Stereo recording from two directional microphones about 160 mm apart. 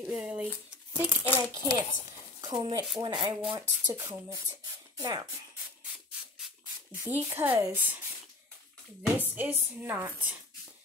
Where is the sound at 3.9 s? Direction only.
20° right (ahead or behind).